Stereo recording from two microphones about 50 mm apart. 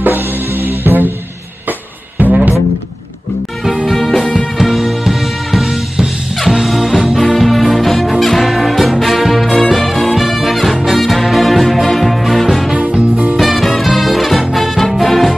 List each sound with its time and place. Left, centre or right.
0.0 s music: right
3.6 s music: centre
12.7 s music: right
13.4 s swing music: centre
14.5 s music: centre